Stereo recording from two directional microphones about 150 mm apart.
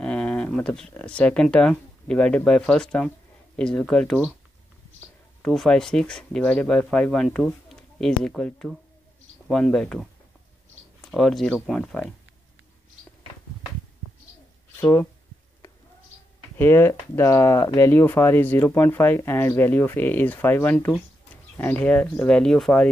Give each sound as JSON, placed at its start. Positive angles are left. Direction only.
{"t": 0.0, "sound": "speech", "side_deg": 5}
{"t": 5.4, "sound": "speech", "side_deg": 5}
{"t": 14.8, "sound": "speech", "side_deg": 15}
{"t": 16.5, "sound": "speech", "side_deg": 15}